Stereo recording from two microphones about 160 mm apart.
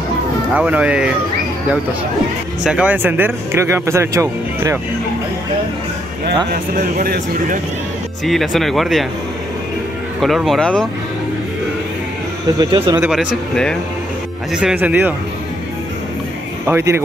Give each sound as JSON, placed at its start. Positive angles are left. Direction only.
{"t": 0.6, "sound": "speech", "side_deg": -10}
{"t": 2.6, "sound": "speech", "side_deg": -5}
{"t": 6.7, "sound": "speech", "side_deg": -65}
{"t": 8.3, "sound": "speech", "side_deg": 0}
{"t": 10.2, "sound": "speech", "side_deg": 0}
{"t": 12.5, "sound": "speech", "side_deg": -30}
{"t": 13.1, "sound": "speech", "side_deg": -5}
{"t": 16.6, "sound": "speech", "side_deg": -15}